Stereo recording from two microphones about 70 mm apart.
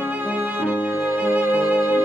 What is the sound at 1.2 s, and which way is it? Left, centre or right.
Music, right.